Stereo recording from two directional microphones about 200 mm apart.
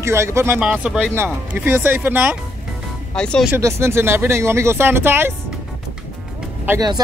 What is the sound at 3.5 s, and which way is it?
Speech, 15° right (ahead or behind).